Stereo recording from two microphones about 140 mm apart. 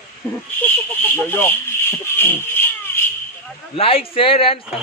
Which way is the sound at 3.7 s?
40° left (ahead or behind).